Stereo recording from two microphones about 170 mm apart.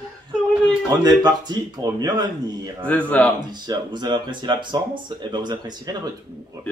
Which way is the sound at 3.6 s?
25° right (ahead or behind).